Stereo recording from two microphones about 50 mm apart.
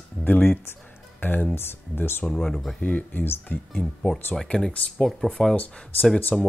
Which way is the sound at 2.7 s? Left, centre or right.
Left.